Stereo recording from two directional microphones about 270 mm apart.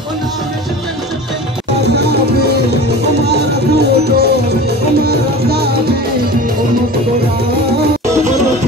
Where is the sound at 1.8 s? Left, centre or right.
Right.